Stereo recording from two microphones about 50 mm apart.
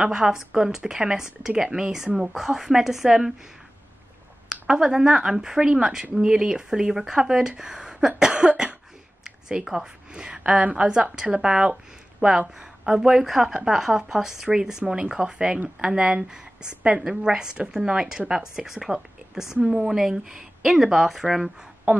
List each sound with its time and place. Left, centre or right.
0.0 s speech: centre
4.5 s a woman's voice: centre